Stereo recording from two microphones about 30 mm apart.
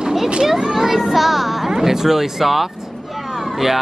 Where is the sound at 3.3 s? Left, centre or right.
Centre.